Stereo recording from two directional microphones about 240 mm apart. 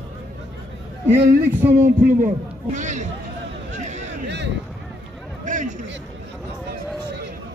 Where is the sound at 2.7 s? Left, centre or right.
Right.